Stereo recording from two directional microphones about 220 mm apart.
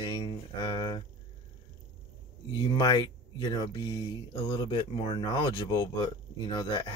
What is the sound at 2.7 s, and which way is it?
Speech, 15° left (ahead or behind).